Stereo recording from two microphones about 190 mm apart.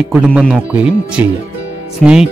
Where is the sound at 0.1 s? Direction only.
5° right (ahead or behind).